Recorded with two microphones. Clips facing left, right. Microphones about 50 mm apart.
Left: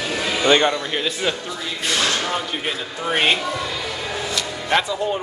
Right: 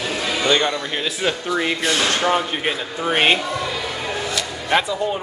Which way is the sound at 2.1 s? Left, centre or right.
Right.